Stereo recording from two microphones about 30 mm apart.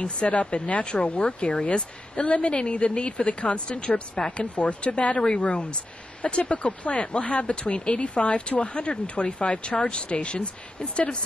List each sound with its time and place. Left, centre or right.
0.2 s speech: centre
1.0 s a woman's voice: left
4.6 s speech: left
5.2 s a woman's voice: left
6.8 s speech: left
9.5 s a woman's voice: left